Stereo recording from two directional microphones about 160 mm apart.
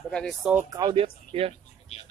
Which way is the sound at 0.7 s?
25° right (ahead or behind).